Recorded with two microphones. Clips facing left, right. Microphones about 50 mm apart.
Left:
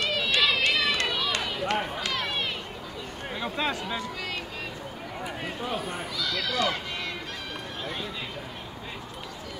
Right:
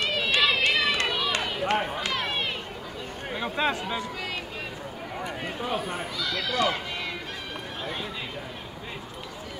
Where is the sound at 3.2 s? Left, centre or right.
Centre.